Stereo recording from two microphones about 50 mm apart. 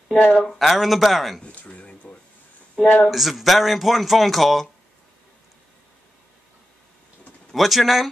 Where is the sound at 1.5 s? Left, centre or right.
Left.